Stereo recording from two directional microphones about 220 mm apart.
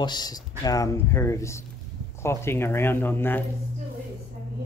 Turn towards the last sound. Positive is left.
turn(degrees=10)  # may be behind; listen again after turning